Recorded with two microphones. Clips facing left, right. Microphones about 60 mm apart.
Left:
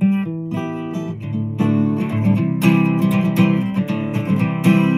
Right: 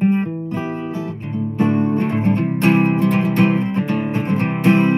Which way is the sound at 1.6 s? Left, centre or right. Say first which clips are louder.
Right 1 dB; right.